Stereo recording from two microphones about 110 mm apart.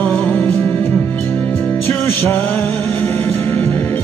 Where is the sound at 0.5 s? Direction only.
25° left (ahead or behind).